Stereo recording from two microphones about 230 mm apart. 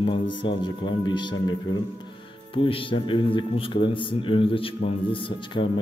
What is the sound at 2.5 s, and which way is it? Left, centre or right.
A man's voice, left.